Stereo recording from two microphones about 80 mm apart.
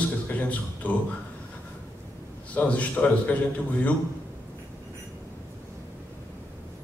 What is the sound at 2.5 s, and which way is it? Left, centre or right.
Speech, centre.